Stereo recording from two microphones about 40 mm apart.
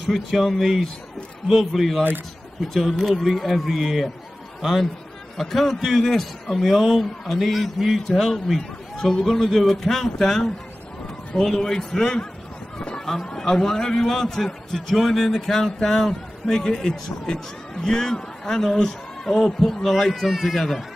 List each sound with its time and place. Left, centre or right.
0.0 s a man's voice: centre
5.4 s a man's voice: centre
12.7 s vehicle: left
13.0 s a man's voice: centre